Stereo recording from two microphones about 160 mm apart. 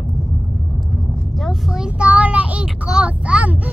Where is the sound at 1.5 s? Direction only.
5° right (ahead or behind).